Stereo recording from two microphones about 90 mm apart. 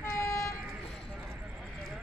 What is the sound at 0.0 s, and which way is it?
Vehicle, 35° left (ahead or behind).